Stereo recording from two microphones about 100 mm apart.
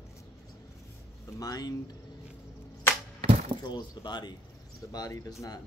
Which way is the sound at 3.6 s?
45° left (ahead or behind).